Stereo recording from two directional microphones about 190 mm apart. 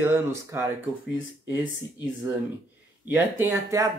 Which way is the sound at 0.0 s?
15° right (ahead or behind).